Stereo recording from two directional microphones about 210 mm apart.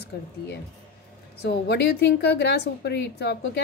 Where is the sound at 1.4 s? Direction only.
55° left (ahead or behind).